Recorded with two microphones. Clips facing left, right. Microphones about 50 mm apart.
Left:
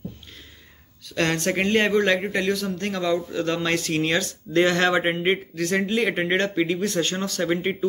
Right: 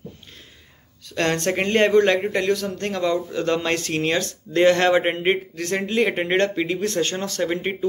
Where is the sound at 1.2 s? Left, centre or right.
Right.